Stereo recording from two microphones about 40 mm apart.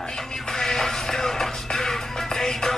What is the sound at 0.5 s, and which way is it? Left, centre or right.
Music, centre.